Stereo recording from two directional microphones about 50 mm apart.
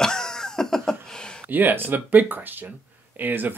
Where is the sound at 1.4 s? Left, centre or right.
Right.